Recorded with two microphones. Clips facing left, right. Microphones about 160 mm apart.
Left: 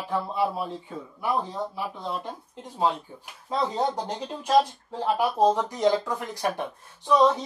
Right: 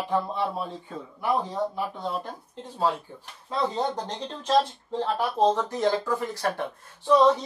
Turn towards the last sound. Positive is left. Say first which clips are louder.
# right 1 dB
turn(degrees=10)  # may be behind; listen again after turning